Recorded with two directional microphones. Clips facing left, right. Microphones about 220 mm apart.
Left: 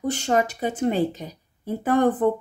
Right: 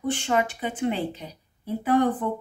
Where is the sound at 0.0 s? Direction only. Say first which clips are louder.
Left 2 dB; 40° left (ahead or behind).